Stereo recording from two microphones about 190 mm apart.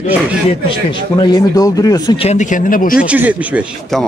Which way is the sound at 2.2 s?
40° left (ahead or behind).